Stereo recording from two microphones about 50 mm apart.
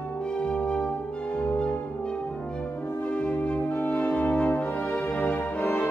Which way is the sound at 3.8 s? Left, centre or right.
Left.